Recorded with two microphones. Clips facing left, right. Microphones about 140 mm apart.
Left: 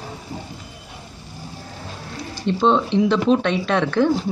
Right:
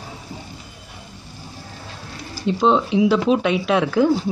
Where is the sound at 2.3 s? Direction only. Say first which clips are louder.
Even; 5° right (ahead or behind).